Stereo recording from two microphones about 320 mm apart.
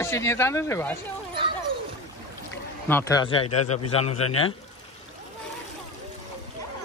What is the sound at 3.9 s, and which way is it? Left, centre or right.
Speech, centre.